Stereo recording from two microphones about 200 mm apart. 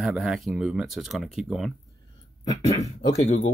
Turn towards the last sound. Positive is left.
turn(degrees=35)  # may be behind; listen again after turning